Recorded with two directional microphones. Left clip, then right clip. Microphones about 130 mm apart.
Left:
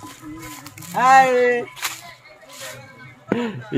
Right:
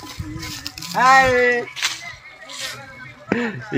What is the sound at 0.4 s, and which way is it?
Music, 65° right (ahead or behind).